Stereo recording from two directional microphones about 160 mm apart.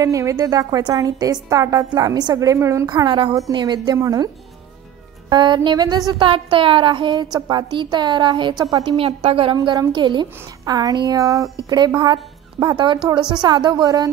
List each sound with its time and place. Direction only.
0.0 s a woman's voice: 20° right (ahead or behind)
5.3 s a woman's voice: 30° right (ahead or behind)